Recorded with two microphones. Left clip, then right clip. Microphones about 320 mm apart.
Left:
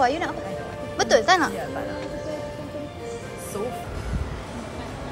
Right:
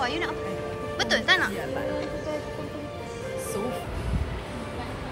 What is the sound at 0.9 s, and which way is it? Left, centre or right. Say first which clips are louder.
Speech: left 5 dB; centre.